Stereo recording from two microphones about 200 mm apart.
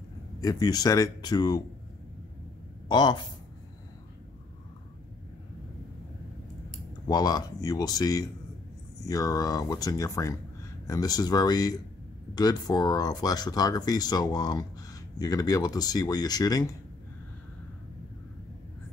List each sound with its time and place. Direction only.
0.4 s speech: 20° left (ahead or behind)
2.9 s speech: 20° left (ahead or behind)
7.1 s speech: 20° left (ahead or behind)